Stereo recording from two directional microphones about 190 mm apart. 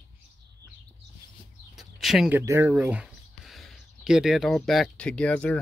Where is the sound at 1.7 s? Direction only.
Centre (ahead or behind).